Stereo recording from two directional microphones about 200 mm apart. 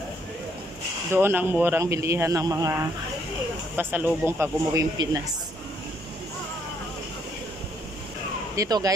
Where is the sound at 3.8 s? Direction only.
10° right (ahead or behind).